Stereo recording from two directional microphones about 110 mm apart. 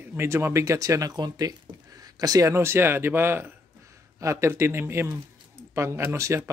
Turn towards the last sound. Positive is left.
turn(degrees=-25)  # may be behind; listen again after turning